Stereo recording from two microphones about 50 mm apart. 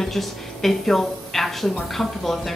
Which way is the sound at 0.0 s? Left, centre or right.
Centre.